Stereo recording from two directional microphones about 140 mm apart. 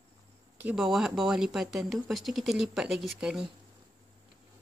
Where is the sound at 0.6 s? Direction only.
5° right (ahead or behind).